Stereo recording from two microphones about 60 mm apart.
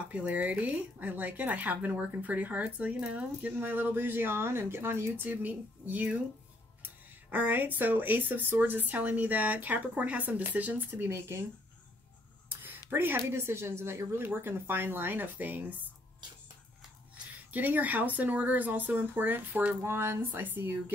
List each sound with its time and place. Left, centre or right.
0.1 s speech: right
3.5 s speech: right
12.9 s speech: right
17.5 s speech: right
19.8 s speech: right